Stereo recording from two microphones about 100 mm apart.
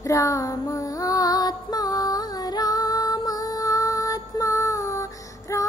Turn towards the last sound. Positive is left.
turn(degrees=30)  # may be behind; listen again after turning